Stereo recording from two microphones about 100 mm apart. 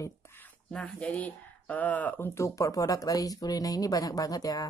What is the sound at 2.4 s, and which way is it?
Speech, 30° left (ahead or behind).